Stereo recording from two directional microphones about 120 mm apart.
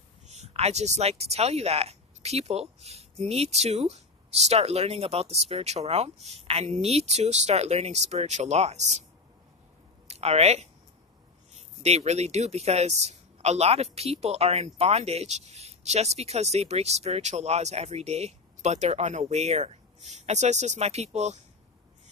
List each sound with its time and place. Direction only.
0.3 s speech: 65° right (ahead or behind)
10.0 s speech: 65° right (ahead or behind)
11.8 s speech: 65° right (ahead or behind)